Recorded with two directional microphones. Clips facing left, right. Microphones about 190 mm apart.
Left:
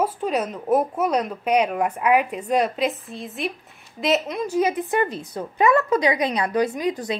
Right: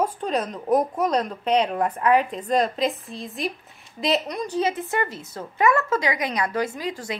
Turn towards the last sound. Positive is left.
turn(degrees=20)  # may be behind; listen again after turning